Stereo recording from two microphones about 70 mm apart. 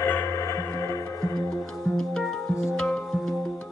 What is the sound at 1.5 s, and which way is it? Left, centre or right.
Music, centre.